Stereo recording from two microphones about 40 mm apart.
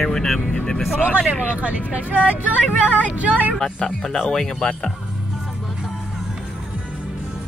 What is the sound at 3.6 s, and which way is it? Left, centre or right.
Speech, centre.